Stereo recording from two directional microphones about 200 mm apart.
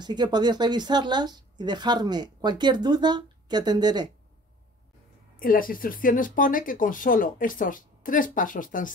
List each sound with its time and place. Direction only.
0.0 s speech: 20° right (ahead or behind)
5.4 s speech: 45° left (ahead or behind)